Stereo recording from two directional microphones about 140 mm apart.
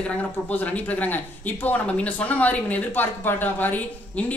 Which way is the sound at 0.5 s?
10° left (ahead or behind).